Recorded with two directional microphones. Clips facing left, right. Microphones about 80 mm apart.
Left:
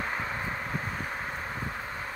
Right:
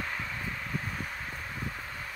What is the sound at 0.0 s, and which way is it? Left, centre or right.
Vehicle, left.